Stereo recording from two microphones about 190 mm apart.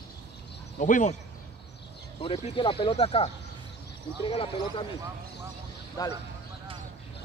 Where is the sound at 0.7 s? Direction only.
45° left (ahead or behind).